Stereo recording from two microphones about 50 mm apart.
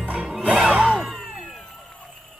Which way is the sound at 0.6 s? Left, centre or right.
Centre.